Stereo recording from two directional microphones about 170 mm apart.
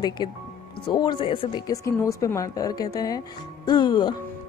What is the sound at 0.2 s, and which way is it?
Speech, 25° left (ahead or behind).